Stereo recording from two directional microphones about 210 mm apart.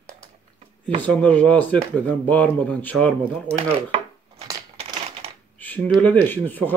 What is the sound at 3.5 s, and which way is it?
Chopping, 30° right (ahead or behind).